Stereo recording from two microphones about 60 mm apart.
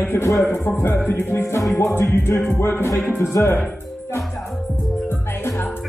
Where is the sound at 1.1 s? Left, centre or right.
Left.